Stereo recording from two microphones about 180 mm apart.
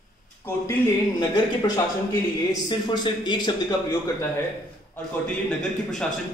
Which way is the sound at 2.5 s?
25° left (ahead or behind).